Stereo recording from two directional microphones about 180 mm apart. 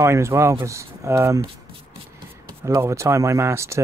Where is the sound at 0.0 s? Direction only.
15° right (ahead or behind).